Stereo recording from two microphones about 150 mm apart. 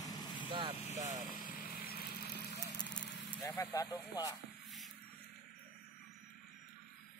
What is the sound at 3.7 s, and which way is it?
Speech, 25° left (ahead or behind).